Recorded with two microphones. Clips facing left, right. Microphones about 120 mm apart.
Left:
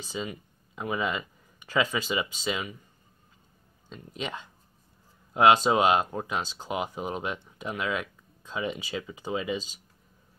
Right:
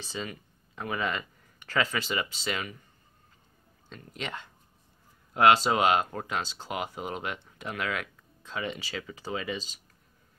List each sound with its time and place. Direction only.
0.1 s speech: 10° left (ahead or behind)
4.2 s speech: 15° left (ahead or behind)